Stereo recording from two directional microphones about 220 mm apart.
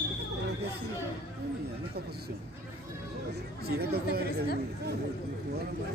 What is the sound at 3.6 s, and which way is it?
Chatter, 45° right (ahead or behind).